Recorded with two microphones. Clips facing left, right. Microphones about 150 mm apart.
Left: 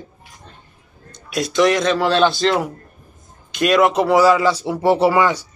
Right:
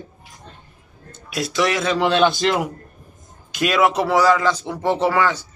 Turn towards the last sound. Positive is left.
turn(degrees=10)  # may be behind; listen again after turning